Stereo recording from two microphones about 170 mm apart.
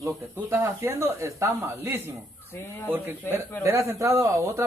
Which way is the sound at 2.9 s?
15° right (ahead or behind).